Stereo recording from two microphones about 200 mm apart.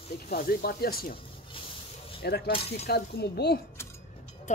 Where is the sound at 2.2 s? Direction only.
50° left (ahead or behind).